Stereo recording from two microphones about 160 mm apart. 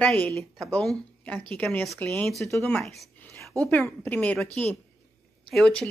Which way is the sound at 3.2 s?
15° left (ahead or behind).